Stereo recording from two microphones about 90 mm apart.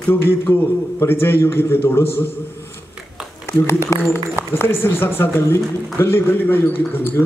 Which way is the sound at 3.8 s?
30° left (ahead or behind).